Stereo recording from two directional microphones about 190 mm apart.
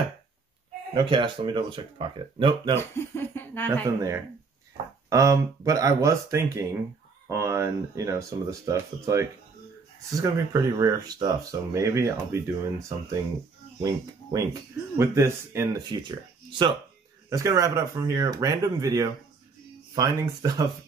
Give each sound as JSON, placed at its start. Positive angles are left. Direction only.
{"t": 0.9, "sound": "speech", "side_deg": -25}
{"t": 3.0, "sound": "a sound", "side_deg": 15}
{"t": 5.1, "sound": "speech", "side_deg": -15}
{"t": 15.9, "sound": "speech", "side_deg": -25}